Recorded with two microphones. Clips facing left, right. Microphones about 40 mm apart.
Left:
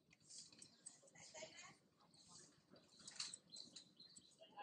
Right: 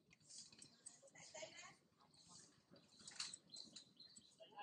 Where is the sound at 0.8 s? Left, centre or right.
Centre.